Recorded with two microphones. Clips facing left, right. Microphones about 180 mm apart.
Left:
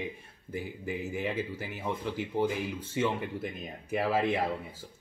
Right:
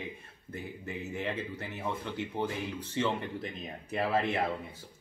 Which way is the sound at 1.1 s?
10° left (ahead or behind).